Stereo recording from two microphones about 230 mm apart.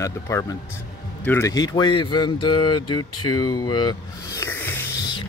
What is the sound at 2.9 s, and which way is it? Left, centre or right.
Speech, left.